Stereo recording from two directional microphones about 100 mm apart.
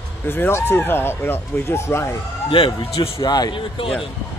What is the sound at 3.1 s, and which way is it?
Speech, 40° left (ahead or behind).